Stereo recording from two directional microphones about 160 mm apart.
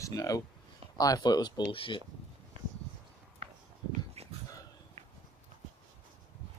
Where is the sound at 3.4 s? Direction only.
40° right (ahead or behind).